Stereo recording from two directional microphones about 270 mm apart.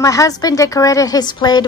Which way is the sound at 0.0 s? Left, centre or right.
Centre.